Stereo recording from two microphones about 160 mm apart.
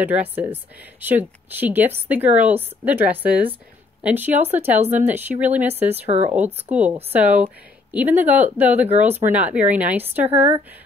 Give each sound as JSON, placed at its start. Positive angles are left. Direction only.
{"t": 0.0, "sound": "a woman's voice", "side_deg": -10}
{"t": 6.0, "sound": "speech", "side_deg": -40}
{"t": 7.0, "sound": "a woman's voice", "side_deg": -10}